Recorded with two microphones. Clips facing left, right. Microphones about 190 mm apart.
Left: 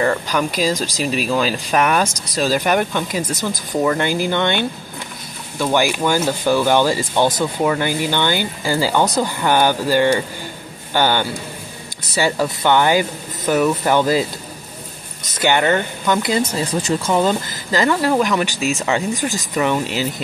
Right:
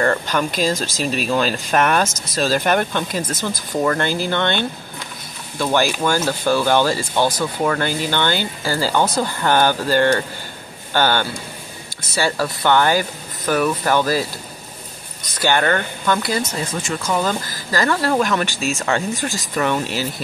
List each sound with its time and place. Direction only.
0.0 s speech: 5° left (ahead or behind)
15.3 s speech: 15° left (ahead or behind)